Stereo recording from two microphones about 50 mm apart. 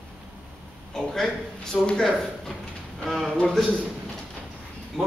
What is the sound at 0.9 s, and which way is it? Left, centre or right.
Speech, centre.